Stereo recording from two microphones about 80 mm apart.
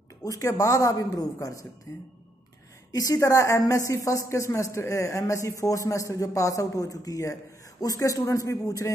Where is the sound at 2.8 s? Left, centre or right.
Left.